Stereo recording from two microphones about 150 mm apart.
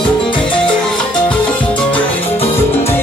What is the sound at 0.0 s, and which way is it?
Music, 30° left (ahead or behind).